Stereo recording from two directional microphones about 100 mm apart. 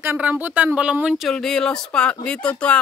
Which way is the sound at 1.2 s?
5° left (ahead or behind).